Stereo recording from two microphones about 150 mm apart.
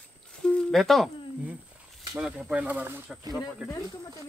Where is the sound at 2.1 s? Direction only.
5° right (ahead or behind).